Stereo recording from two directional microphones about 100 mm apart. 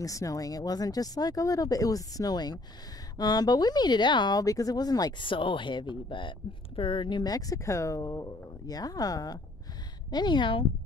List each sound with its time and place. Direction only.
0.0 s speech: 35° left (ahead or behind)
5.2 s speech: 55° left (ahead or behind); by 9.4 s 40° left (ahead or behind)
10.1 s speech: 50° left (ahead or behind)